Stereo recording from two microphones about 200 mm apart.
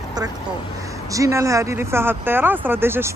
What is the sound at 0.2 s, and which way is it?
Speech, 20° right (ahead or behind).